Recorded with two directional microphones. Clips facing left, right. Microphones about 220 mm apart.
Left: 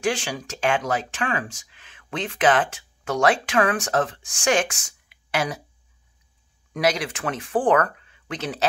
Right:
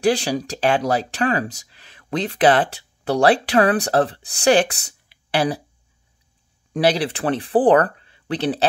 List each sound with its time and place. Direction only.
0.0 s speech: 35° right (ahead or behind)
6.7 s speech: 30° right (ahead or behind)